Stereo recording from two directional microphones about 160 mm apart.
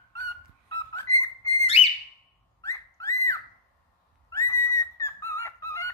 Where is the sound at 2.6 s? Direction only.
15° left (ahead or behind).